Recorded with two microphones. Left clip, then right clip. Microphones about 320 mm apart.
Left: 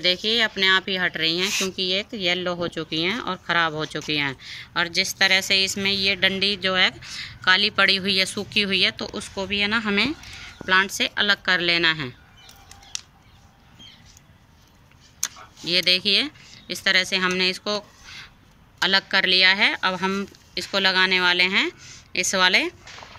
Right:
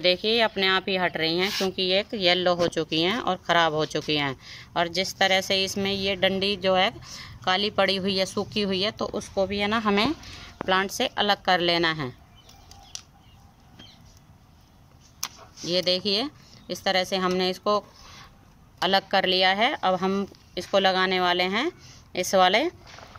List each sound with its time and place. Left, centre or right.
0.0 s speech: right
15.2 s tick-tock: centre
15.6 s speech: centre